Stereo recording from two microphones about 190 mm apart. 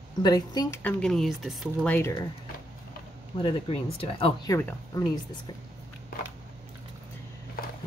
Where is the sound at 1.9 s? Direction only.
15° left (ahead or behind).